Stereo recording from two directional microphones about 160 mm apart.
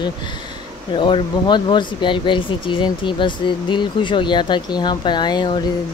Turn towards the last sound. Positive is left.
turn(degrees=25)  # may be behind; listen again after turning